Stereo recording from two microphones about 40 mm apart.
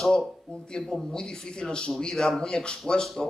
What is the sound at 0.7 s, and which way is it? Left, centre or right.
A man's voice, centre.